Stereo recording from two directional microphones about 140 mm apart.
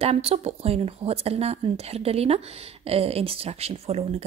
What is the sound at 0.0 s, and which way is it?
Speech, 45° right (ahead or behind).